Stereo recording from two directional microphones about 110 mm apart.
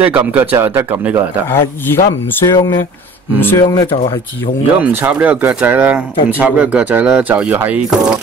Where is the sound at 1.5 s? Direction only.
20° left (ahead or behind).